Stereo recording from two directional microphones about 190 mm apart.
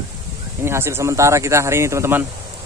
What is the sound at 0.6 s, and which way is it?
Speech, 15° right (ahead or behind).